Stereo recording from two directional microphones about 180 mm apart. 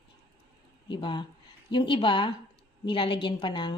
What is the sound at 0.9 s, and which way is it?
A woman's voice, 25° left (ahead or behind).